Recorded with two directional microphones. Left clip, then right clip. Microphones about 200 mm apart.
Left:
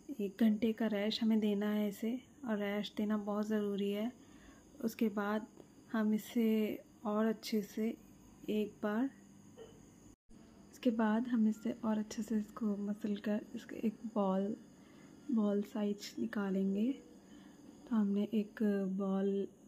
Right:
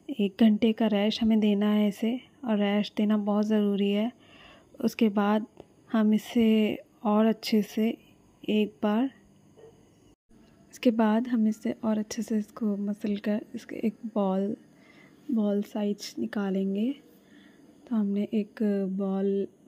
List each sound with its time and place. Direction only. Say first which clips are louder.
0.1 s speech: right 10 dB; 35° right (ahead or behind)
10.7 s a woman's voice: right 10 dB; 35° right (ahead or behind)